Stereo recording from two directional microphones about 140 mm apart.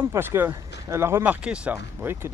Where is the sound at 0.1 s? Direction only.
15° right (ahead or behind).